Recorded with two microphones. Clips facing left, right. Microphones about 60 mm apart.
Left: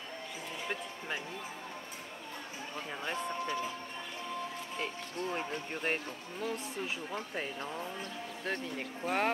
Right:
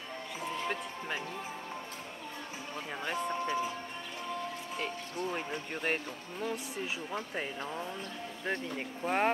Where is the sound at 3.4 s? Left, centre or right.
Centre.